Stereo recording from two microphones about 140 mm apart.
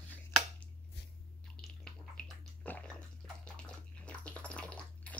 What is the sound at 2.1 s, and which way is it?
Bathtub, 10° left (ahead or behind).